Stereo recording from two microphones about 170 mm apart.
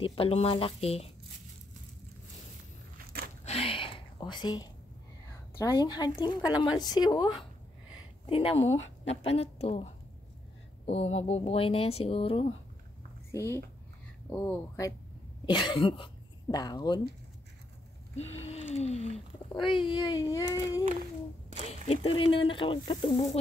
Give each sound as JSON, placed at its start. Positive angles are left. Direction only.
{"t": 0.0, "sound": "speech", "side_deg": 35}
{"t": 3.4, "sound": "whispering", "side_deg": 35}
{"t": 5.6, "sound": "speech", "side_deg": 20}
{"t": 8.3, "sound": "speech", "side_deg": 35}
{"t": 10.9, "sound": "speech", "side_deg": 35}
{"t": 13.3, "sound": "speech", "side_deg": 15}
{"t": 15.4, "sound": "speech", "side_deg": 25}
{"t": 18.1, "sound": "a sound", "side_deg": 40}
{"t": 19.6, "sound": "speech", "side_deg": 30}
{"t": 21.6, "sound": "speech", "side_deg": 35}